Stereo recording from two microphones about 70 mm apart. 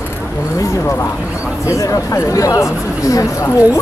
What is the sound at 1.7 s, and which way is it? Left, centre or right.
Speech, left.